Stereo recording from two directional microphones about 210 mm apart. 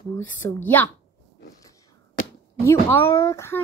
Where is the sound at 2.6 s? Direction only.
15° left (ahead or behind).